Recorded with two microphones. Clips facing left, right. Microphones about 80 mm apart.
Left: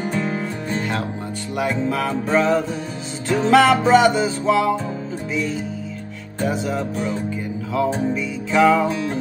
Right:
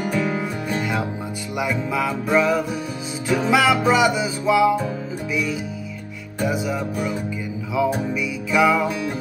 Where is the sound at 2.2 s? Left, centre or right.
Centre.